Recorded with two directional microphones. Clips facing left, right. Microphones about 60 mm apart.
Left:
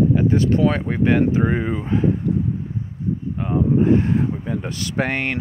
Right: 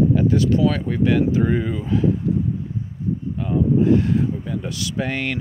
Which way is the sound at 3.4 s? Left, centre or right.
Left.